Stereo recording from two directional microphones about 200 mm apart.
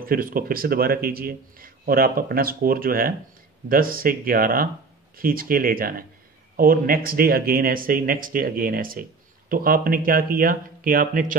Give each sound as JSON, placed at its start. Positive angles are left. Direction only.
{"t": 0.0, "sound": "speech", "side_deg": -45}